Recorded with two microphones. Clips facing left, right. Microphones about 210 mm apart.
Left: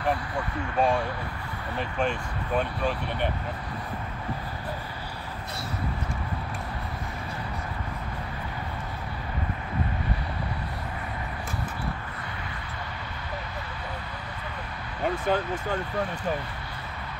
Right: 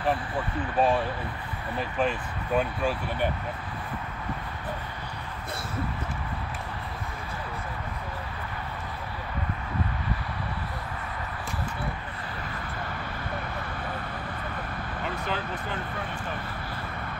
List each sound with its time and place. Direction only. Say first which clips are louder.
0.7 s speech: even; centre (ahead or behind)
15.2 s speech: left 8 dB; 50° left (ahead or behind)